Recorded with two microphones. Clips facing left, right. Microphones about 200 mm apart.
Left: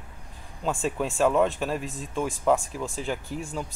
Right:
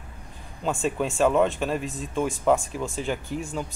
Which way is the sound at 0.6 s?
Centre (ahead or behind).